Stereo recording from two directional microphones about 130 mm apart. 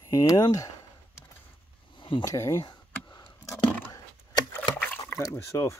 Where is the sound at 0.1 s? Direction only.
30° left (ahead or behind).